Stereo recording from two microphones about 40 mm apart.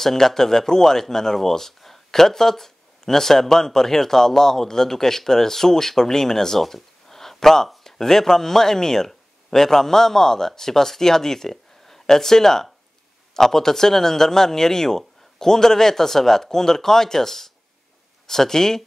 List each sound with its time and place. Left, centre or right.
0.0 s speech: centre